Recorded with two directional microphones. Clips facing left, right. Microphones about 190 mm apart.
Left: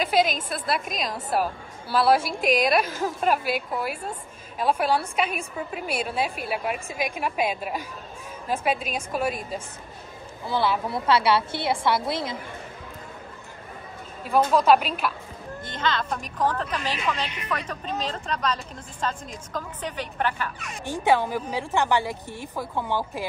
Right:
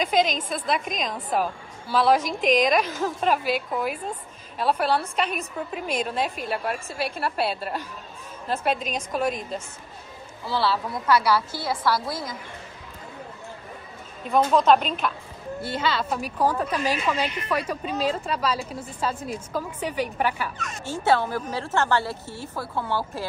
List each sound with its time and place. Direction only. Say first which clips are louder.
0.0 s a woman's voice: even; 5° left (ahead or behind); by 12.4 s 25° left (ahead or behind)
14.2 s a woman's voice: even; 10° left (ahead or behind)
15.6 s a woman's voice: right 1 dB; 10° right (ahead or behind)
20.5 s a woman's voice: even; 10° left (ahead or behind)